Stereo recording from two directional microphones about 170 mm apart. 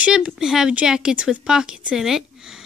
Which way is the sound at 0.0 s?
5° right (ahead or behind).